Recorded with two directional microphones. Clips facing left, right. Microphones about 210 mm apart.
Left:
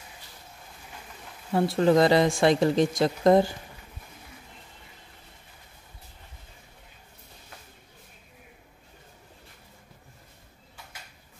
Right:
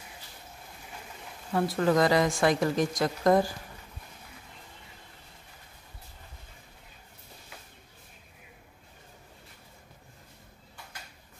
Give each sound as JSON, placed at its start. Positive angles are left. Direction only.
{"t": 1.5, "sound": "speech", "side_deg": 25}